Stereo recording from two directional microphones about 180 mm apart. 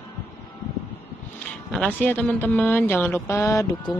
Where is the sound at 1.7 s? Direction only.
5° left (ahead or behind).